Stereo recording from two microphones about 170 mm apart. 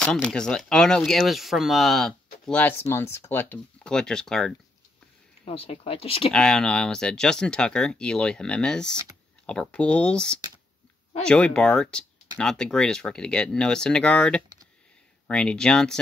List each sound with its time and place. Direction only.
0.0 s speech: 5° left (ahead or behind)
5.4 s speech: 35° left (ahead or behind)
6.3 s speech: 5° left (ahead or behind)